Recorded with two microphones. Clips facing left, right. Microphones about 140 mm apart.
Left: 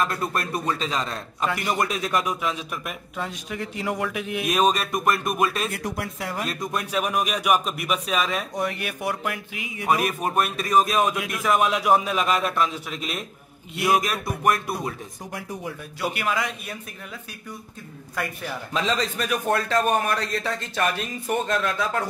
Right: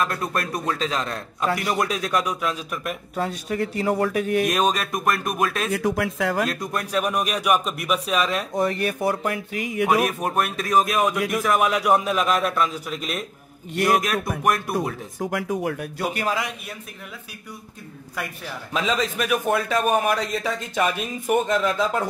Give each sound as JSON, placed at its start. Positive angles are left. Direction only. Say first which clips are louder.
{"t": 0.0, "sound": "a man's voice", "louder": "right 1 dB", "side_deg": 0}
{"t": 3.2, "sound": "speech", "louder": "right 6 dB", "side_deg": -40}
{"t": 4.5, "sound": "a man's voice", "louder": "even", "side_deg": 0}
{"t": 5.8, "sound": "speech", "louder": "right 7 dB", "side_deg": -90}
{"t": 6.5, "sound": "a man's voice", "louder": "right 1 dB", "side_deg": 0}
{"t": 8.6, "sound": "speech", "louder": "right 5 dB", "side_deg": -35}
{"t": 9.8, "sound": "a man's voice", "louder": "even", "side_deg": 0}
{"t": 15.1, "sound": "speech", "louder": "right 9 dB", "side_deg": -90}
{"t": 16.0, "sound": "speech", "louder": "even", "side_deg": -40}
{"t": 18.1, "sound": "a man's voice", "louder": "left 2 dB", "side_deg": -5}